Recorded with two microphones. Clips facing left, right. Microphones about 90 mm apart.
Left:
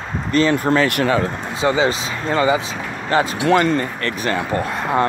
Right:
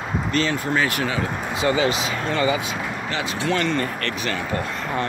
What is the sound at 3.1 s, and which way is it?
Speech, 40° left (ahead or behind).